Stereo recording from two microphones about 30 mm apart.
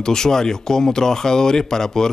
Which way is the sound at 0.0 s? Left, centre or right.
Centre.